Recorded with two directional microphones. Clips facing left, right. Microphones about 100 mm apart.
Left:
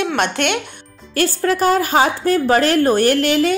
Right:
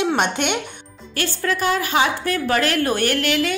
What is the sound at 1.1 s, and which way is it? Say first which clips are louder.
A woman's voice: left 6 dB; 40° left (ahead or behind).